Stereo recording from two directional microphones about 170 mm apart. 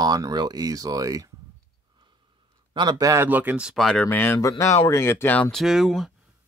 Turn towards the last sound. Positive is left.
turn(degrees=0)  # may be behind; listen again after turning